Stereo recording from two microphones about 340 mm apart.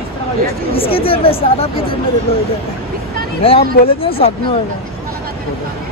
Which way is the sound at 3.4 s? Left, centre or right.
Centre.